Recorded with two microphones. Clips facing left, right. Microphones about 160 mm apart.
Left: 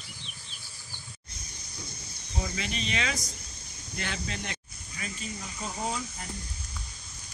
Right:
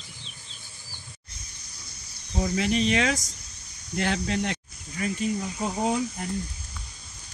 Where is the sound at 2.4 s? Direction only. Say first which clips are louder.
Right 10 dB; 60° right (ahead or behind).